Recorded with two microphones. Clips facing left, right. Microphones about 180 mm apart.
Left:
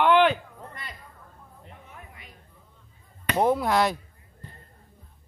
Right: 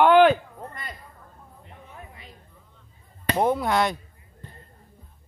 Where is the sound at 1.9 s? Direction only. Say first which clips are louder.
Right 3 dB; 30° right (ahead or behind).